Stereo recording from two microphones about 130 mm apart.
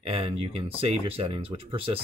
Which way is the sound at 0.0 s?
45° right (ahead or behind).